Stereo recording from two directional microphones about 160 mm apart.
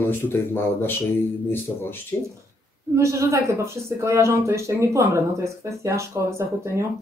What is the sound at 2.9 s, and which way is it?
Speech, 20° right (ahead or behind).